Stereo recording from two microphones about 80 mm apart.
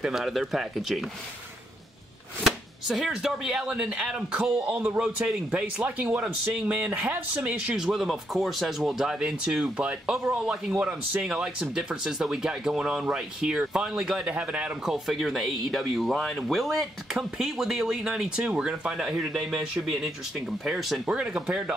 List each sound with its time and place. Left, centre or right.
0.0 s speech: centre
2.4 s speech: centre
15.0 s speech: centre